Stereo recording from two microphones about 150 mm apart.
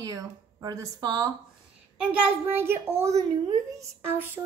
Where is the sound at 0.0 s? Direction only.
25° right (ahead or behind).